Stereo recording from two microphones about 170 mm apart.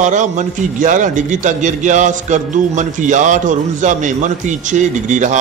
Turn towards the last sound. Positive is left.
turn(degrees=-45)  # may be behind; listen again after turning